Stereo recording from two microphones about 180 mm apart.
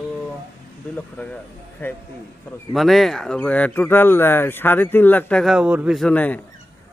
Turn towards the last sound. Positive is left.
turn(degrees=10)  # may be behind; listen again after turning